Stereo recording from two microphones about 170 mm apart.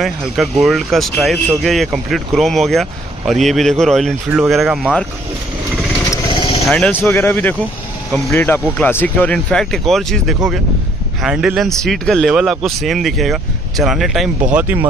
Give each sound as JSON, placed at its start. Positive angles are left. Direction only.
{"t": 0.0, "sound": "speech", "side_deg": 0}
{"t": 6.0, "sound": "vehicle", "side_deg": 30}
{"t": 6.7, "sound": "speech", "side_deg": 5}